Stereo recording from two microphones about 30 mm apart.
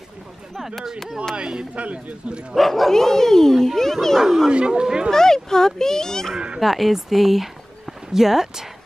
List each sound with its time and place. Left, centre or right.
1.3 s speech: right
1.8 s speech: right
2.5 s speech: centre
2.9 s a child's voice: centre
4.5 s speech: right
5.1 s a child's voice: centre
6.6 s speech: centre